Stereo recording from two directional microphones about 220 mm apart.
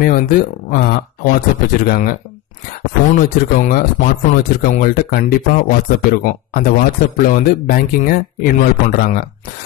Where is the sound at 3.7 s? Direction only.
40° left (ahead or behind).